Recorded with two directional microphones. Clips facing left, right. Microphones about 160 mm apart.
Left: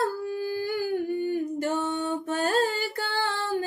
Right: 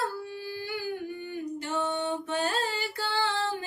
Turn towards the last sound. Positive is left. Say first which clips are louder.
# left 1 dB
turn(degrees=45)  # may be behind; listen again after turning